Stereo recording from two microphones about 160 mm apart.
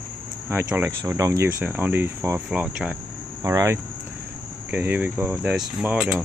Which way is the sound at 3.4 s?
20° right (ahead or behind).